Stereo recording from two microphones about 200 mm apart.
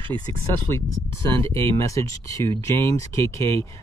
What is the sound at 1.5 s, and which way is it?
Speech, 15° left (ahead or behind).